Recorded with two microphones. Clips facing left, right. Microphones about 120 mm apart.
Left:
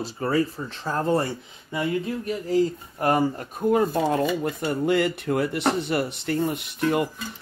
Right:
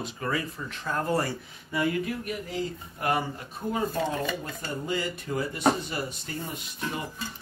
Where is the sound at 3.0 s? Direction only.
40° left (ahead or behind).